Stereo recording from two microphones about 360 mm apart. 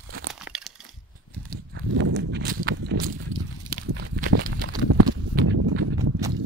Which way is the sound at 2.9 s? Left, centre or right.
Right.